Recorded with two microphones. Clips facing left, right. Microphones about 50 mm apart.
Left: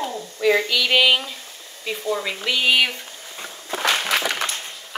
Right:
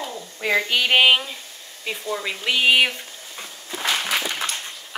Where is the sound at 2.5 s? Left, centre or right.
Centre.